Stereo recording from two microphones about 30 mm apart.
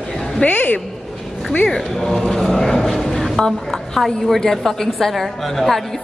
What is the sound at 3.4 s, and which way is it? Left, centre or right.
A woman's voice, centre.